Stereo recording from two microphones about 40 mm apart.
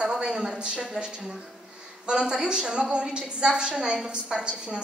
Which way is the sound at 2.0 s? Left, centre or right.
Right.